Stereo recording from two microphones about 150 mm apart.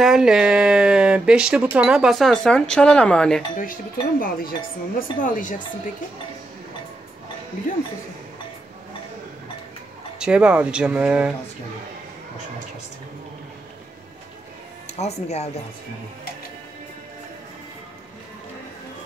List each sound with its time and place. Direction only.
0.0 s speech: 5° right (ahead or behind)
3.5 s dishes: 70° left (ahead or behind)
5.2 s speech: 60° left (ahead or behind)
10.1 s speech: 5° right (ahead or behind)
14.9 s speech: 45° left (ahead or behind)